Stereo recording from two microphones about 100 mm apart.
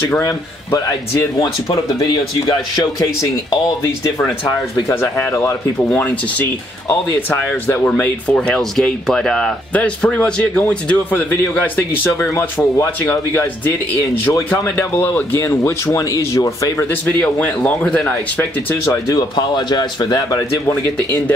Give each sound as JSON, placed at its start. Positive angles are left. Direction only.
{"t": 0.2, "sound": "speech", "side_deg": 30}
{"t": 4.2, "sound": "speech", "side_deg": 30}
{"t": 5.8, "sound": "speech", "side_deg": 15}
{"t": 14.6, "sound": "speech", "side_deg": 20}
{"t": 15.4, "sound": "speech", "side_deg": 30}
{"t": 17.2, "sound": "speech", "side_deg": 15}
{"t": 19.0, "sound": "a man's voice", "side_deg": 45}